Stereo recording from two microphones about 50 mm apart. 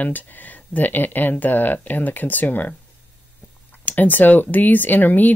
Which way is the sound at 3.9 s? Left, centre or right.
Left.